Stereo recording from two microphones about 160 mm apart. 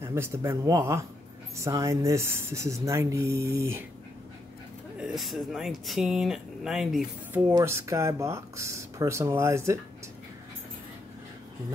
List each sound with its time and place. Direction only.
0.0 s speech: 15° right (ahead or behind)
4.9 s speech: 5° right (ahead or behind)
7.6 s speech: 15° right (ahead or behind)